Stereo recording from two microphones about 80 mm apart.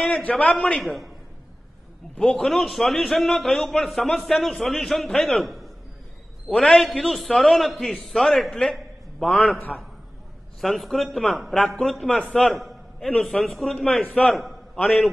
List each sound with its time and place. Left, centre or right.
0.0 s a man's voice: centre
0.7 s a man's voice: centre
2.1 s a man's voice: centre
8.7 s a sound: centre
10.6 s a man's voice: centre
12.4 s a sound: centre
13.2 s a man's voice: centre